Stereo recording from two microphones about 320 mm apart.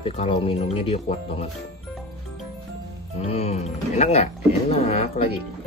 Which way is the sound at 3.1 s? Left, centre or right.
Centre.